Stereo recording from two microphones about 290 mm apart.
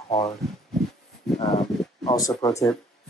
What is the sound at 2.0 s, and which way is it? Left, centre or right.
Speech, centre.